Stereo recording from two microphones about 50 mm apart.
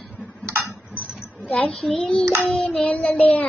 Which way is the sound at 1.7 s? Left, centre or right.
Centre.